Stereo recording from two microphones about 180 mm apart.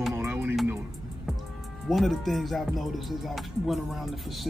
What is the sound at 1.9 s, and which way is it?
Speech, centre (ahead or behind).